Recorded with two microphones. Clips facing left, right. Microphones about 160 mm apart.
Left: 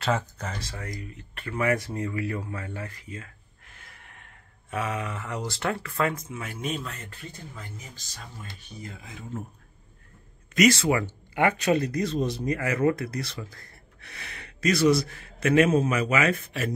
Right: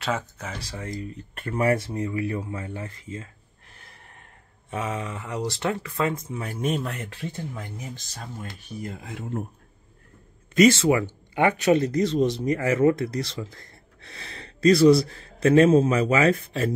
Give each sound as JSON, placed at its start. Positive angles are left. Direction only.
{"t": 0.0, "sound": "speech", "side_deg": -5}
{"t": 0.7, "sound": "speech", "side_deg": -25}
{"t": 1.3, "sound": "speech", "side_deg": -40}
{"t": 2.0, "sound": "speech", "side_deg": -20}
{"t": 3.7, "sound": "gasp", "side_deg": -35}
{"t": 4.6, "sound": "speech", "side_deg": -25}
{"t": 6.6, "sound": "speech", "side_deg": -55}
{"t": 8.1, "sound": "speech", "side_deg": -50}
{"t": 10.8, "sound": "speech", "side_deg": -20}